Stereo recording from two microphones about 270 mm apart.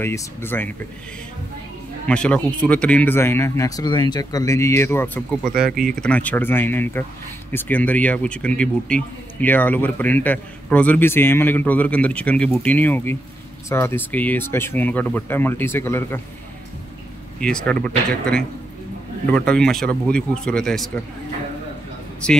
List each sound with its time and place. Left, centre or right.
0.0 s speech: centre
2.0 s speech: centre
5.5 s speech: right
5.9 s speech: centre
17.4 s speech: centre